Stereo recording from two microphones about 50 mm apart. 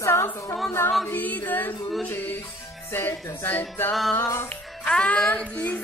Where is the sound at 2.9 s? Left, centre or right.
Left.